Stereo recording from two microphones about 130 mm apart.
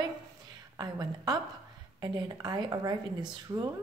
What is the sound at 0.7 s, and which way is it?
A woman's voice, 30° right (ahead or behind).